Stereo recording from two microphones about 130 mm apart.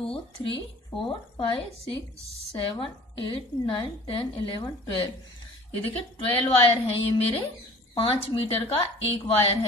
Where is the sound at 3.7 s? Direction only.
40° left (ahead or behind).